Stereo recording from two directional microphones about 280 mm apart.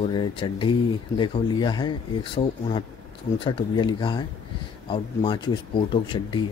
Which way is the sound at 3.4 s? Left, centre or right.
Centre.